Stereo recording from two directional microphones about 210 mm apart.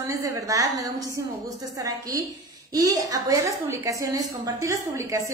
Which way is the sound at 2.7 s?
15° right (ahead or behind).